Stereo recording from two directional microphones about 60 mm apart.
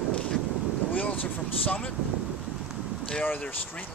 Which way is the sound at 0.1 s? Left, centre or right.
Left.